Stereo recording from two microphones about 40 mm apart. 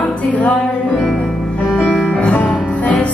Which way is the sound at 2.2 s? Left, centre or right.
Left.